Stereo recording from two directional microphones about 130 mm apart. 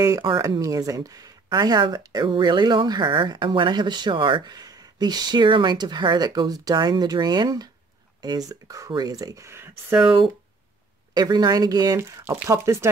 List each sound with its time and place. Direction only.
0.2 s speech: 40° right (ahead or behind)
0.6 s speech: 25° right (ahead or behind)
11.1 s speech: 30° right (ahead or behind)